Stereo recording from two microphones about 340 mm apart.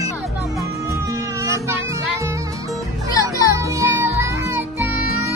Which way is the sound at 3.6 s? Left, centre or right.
Centre.